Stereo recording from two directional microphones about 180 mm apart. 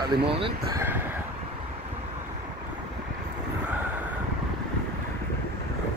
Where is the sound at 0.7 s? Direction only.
15° right (ahead or behind).